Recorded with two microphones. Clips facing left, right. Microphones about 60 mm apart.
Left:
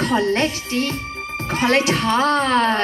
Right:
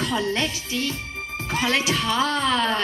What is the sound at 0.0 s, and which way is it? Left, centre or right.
A woman's voice, left.